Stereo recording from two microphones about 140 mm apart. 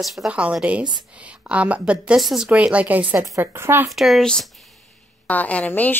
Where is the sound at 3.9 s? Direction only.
Centre (ahead or behind).